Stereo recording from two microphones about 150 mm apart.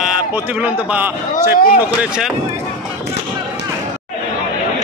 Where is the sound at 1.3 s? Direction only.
60° left (ahead or behind).